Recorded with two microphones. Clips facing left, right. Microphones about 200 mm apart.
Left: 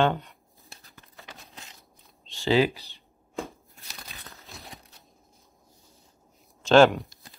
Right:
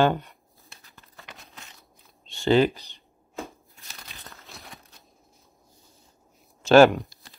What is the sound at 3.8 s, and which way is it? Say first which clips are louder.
Crumpling: left 1 dB; centre (ahead or behind).